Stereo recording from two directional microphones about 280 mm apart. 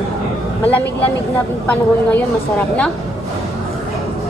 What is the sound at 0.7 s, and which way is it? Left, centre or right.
Speech, left.